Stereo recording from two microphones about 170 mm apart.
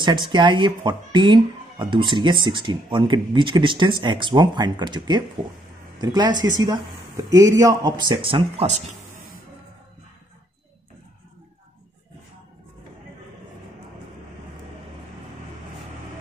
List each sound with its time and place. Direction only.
0.0 s speech: 25° right (ahead or behind)